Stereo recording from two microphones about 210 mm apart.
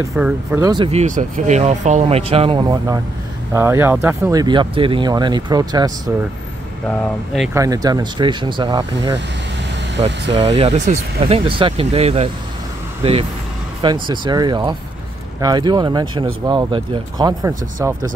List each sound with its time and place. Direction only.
0.1 s speech: 5° right (ahead or behind)
6.9 s speech: centre (ahead or behind)
7.5 s speech: 15° right (ahead or behind)
9.9 s speech: 55° right (ahead or behind)
10.3 s speech: 30° right (ahead or behind)